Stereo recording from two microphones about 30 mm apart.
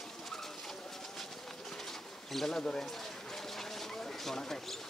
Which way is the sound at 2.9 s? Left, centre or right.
Centre.